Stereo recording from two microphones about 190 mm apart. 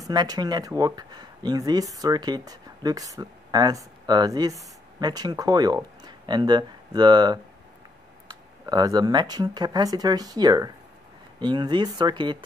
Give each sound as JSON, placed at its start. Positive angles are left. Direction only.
{"t": 0.0, "sound": "speech", "side_deg": -20}
{"t": 8.6, "sound": "speech", "side_deg": -20}